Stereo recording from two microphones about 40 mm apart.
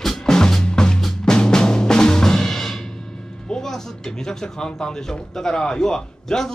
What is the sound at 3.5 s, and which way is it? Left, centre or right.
Speech, centre.